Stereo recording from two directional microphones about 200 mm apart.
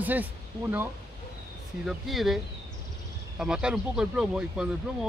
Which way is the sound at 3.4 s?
5° right (ahead or behind).